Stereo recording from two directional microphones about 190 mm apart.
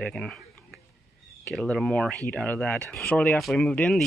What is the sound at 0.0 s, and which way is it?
Speech, 5° left (ahead or behind).